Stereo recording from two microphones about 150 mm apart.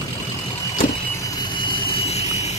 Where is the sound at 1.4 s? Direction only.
30° left (ahead or behind); by 2.5 s 45° left (ahead or behind).